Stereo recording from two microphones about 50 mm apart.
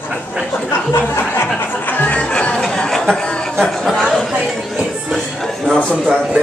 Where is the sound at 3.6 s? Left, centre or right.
Centre.